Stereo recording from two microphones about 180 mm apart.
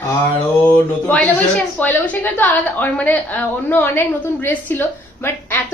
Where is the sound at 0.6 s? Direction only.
10° left (ahead or behind).